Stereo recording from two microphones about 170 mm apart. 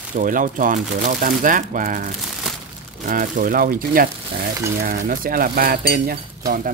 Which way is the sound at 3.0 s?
50° right (ahead or behind).